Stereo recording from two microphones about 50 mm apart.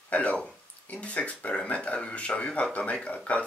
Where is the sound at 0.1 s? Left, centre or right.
Left.